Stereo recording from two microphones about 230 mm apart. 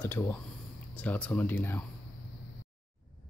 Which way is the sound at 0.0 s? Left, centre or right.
Centre.